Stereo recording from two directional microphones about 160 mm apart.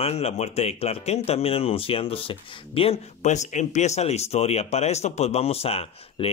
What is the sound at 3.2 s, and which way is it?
Speech, 50° left (ahead or behind).